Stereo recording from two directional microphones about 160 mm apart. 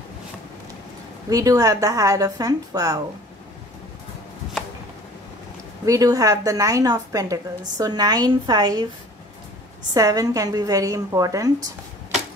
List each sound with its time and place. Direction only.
1.3 s a woman's voice: 20° right (ahead or behind)
5.9 s a woman's voice: 20° right (ahead or behind)
9.9 s a woman's voice: 20° right (ahead or behind)